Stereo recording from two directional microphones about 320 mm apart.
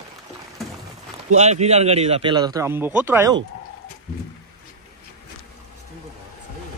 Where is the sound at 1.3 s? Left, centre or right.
Right.